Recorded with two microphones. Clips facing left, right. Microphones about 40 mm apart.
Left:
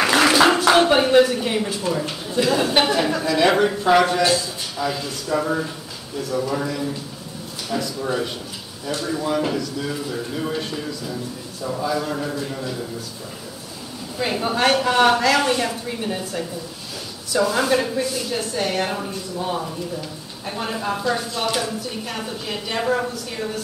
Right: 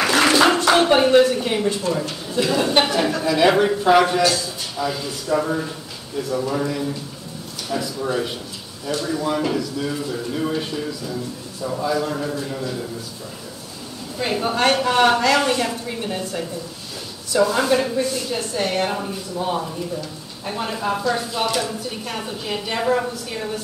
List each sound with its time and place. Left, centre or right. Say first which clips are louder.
0.0 s a sound: even; centre
2.3 s a woman's voice: even; centre
4.2 s a man's voice: even; left
4.7 s a woman's voice: even; centre
9.5 s a woman's voice: right 1 dB; centre
14.1 s a woman's voice: right 1 dB; centre